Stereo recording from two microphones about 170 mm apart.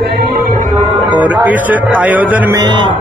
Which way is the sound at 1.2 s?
10° right (ahead or behind).